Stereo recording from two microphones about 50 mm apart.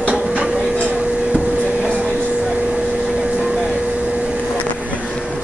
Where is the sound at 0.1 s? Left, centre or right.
Right.